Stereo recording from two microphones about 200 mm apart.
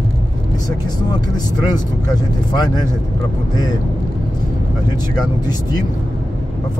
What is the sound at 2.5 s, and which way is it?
Speech, 20° left (ahead or behind).